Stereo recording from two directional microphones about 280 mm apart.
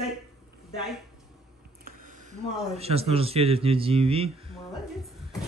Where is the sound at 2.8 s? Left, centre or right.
Right.